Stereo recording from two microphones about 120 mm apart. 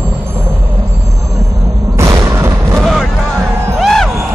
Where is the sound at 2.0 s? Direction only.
25° right (ahead or behind).